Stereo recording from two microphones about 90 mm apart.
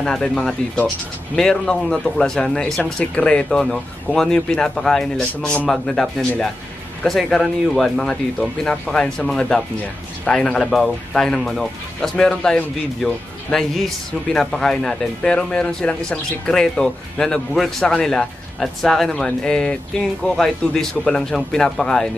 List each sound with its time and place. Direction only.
0.0 s speech: 10° left (ahead or behind)